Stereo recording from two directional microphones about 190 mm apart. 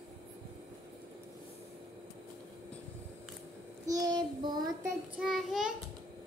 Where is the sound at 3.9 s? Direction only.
20° right (ahead or behind).